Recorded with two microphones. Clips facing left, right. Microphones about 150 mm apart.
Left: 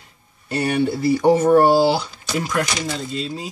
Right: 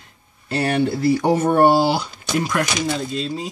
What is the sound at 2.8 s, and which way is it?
Speech, 55° right (ahead or behind).